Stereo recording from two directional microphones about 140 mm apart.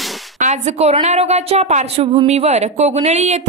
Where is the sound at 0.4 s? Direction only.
55° right (ahead or behind).